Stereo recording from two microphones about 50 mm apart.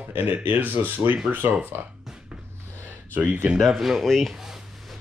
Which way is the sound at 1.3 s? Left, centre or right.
Right.